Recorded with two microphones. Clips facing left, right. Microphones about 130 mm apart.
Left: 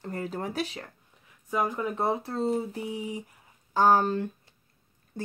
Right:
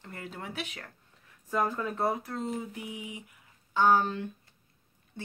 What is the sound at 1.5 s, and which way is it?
Speech, 15° left (ahead or behind).